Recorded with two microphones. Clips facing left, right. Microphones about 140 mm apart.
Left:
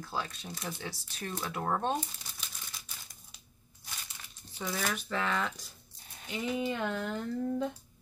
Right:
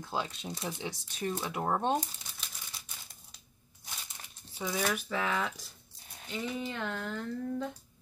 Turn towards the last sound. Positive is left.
turn(degrees=15)  # may be behind; listen again after turning